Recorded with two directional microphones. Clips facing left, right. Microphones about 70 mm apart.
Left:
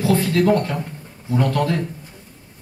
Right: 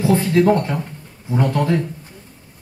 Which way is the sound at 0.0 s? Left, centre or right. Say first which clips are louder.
Right 2 dB; centre.